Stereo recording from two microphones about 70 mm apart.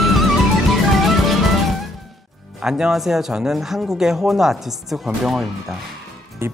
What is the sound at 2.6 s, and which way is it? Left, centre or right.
Speech, centre.